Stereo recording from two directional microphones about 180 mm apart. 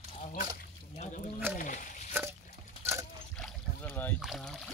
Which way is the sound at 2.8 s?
15° right (ahead or behind).